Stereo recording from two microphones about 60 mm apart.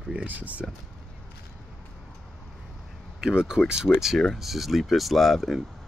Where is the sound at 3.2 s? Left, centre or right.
Centre.